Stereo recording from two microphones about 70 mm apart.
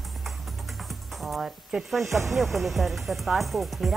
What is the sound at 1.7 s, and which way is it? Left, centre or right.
Speech, centre.